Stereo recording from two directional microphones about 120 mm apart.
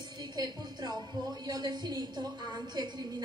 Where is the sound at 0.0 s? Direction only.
35° right (ahead or behind).